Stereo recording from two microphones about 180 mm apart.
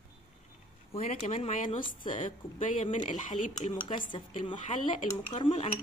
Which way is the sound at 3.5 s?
25° left (ahead or behind).